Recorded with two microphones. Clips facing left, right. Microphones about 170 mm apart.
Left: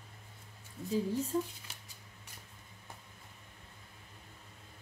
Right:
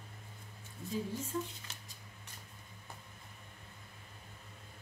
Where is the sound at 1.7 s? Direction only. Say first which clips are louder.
Right 1 dB; 10° left (ahead or behind).